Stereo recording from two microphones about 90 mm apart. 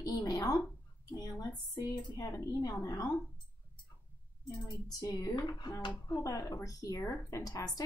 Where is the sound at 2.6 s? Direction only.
45° left (ahead or behind).